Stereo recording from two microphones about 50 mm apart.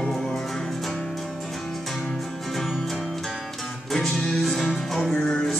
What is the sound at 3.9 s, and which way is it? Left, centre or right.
Music, centre.